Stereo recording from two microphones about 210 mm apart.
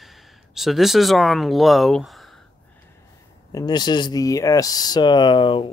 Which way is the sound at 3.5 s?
20° left (ahead or behind).